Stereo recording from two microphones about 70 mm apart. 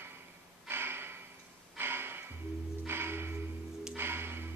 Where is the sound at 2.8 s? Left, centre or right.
Right.